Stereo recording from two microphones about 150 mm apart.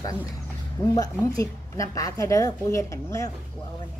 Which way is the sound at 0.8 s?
25° left (ahead or behind).